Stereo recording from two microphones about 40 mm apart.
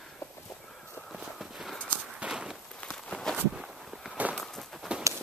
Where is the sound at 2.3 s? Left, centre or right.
Centre.